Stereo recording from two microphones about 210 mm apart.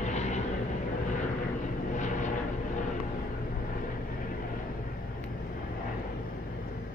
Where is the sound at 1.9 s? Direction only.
35° left (ahead or behind).